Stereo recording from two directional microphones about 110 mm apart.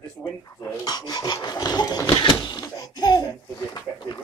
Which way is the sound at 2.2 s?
40° left (ahead or behind).